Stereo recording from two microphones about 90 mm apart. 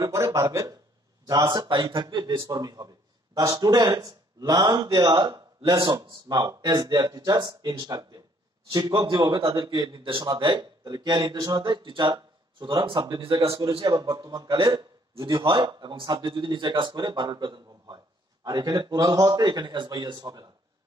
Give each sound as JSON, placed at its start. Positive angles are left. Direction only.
{"t": 0.0, "sound": "a man's voice", "side_deg": -35}
{"t": 1.2, "sound": "a man's voice", "side_deg": -55}
{"t": 13.7, "sound": "a man's voice", "side_deg": -80}
{"t": 13.9, "sound": "speech", "side_deg": -45}
{"t": 14.7, "sound": "a man's voice", "side_deg": -65}